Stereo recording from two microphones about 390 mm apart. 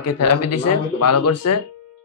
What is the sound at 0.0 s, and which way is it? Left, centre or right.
Speech, left.